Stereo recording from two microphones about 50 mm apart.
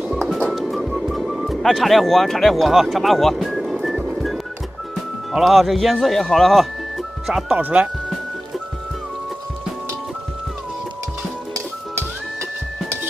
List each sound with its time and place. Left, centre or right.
0.6 s music: centre
1.6 s speech: centre
3.3 s music: centre
5.3 s speech: centre
7.2 s speech: centre
7.5 s speech: right